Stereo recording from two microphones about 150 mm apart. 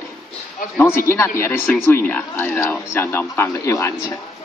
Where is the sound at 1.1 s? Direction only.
15° left (ahead or behind).